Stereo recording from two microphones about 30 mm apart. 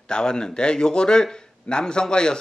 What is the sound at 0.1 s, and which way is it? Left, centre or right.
Speech, left.